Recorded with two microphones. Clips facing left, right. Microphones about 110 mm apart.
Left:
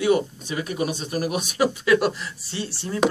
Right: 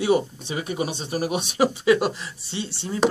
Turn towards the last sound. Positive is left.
turn(degrees=-20)  # may be behind; listen again after turning